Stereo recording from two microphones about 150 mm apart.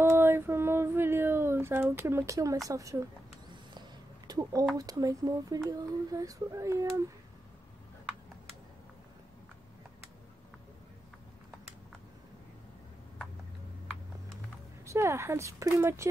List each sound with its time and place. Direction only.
0.0 s female singing: 15° right (ahead or behind)
2.7 s speech: 20° right (ahead or behind)
4.3 s speech: 25° right (ahead or behind)
14.9 s speech: 20° right (ahead or behind)